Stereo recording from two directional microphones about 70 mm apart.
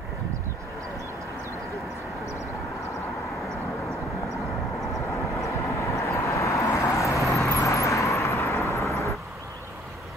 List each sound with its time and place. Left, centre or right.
5.1 s vehicle: left